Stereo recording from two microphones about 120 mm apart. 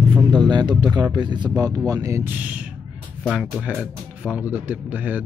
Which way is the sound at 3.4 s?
Centre (ahead or behind).